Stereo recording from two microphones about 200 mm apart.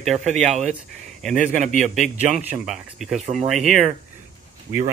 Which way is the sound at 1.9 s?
Centre (ahead or behind).